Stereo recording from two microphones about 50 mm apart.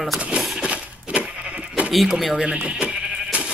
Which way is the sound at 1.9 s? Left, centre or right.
Centre.